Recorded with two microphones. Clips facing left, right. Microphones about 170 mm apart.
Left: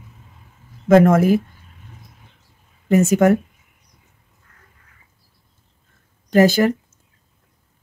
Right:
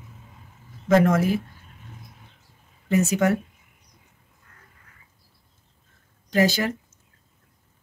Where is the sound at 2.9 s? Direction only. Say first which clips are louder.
Left 7 dB; 50° left (ahead or behind).